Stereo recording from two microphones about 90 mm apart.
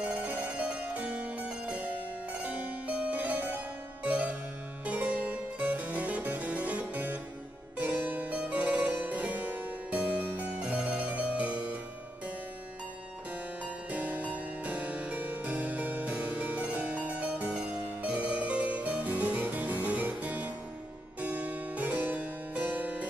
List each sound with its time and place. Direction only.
0.0 s harpsichord: 15° right (ahead or behind)
13.8 s harpsichord: 15° right (ahead or behind)